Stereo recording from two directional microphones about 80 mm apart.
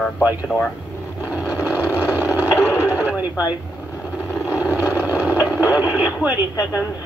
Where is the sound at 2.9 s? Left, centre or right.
Right.